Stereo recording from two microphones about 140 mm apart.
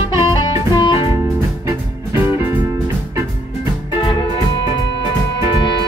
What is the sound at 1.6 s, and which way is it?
Music, 20° right (ahead or behind).